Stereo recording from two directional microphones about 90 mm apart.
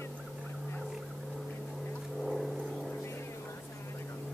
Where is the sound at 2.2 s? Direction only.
5° left (ahead or behind).